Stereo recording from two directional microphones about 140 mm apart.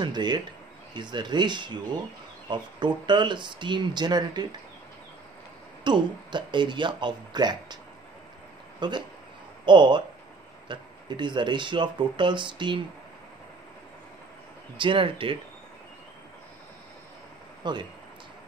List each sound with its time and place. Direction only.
0.0 s speech: 30° right (ahead or behind)
5.9 s speech: 35° right (ahead or behind)
14.8 s speech: 40° right (ahead or behind)
17.6 s speech: 30° right (ahead or behind)